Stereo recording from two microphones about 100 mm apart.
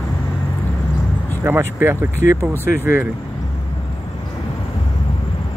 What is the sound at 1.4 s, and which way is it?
Speech, 25° right (ahead or behind).